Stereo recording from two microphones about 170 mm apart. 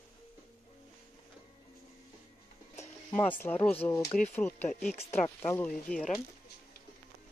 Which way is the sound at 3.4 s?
10° left (ahead or behind).